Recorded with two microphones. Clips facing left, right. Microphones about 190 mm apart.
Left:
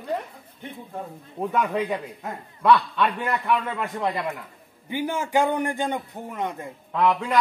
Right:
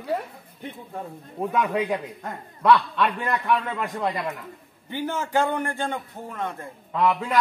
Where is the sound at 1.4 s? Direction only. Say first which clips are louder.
Even; centre (ahead or behind).